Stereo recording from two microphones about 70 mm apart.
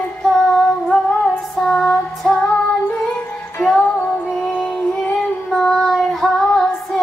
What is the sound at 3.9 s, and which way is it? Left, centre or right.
Music, left.